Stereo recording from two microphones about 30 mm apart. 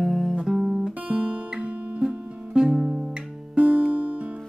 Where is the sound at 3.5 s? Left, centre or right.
Right.